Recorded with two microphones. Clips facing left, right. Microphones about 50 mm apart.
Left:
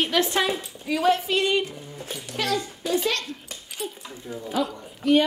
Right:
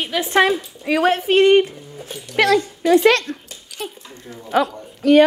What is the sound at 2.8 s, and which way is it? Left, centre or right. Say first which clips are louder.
Speech: right 13 dB; right.